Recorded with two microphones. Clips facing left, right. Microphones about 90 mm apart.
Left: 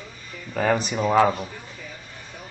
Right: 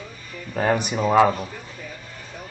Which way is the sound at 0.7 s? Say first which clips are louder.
Right 1 dB; 10° right (ahead or behind).